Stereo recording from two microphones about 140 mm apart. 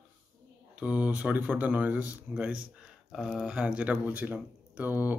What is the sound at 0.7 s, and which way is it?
Speech, 10° right (ahead or behind).